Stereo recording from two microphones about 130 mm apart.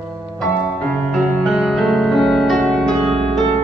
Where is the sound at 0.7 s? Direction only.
10° left (ahead or behind).